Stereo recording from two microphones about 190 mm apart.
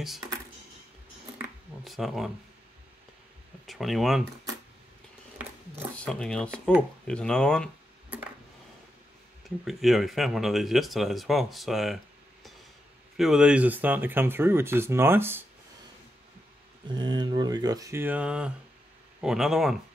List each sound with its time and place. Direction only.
1.9 s speech: centre (ahead or behind)
3.6 s speech: centre (ahead or behind)
5.9 s speech: 5° left (ahead or behind)
9.7 s speech: centre (ahead or behind)
13.2 s speech: 5° right (ahead or behind)
16.8 s speech: 25° right (ahead or behind); by 19.8 s centre (ahead or behind)